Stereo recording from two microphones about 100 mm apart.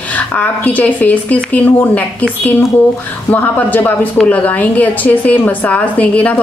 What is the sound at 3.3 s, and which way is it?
A woman's voice, 20° left (ahead or behind).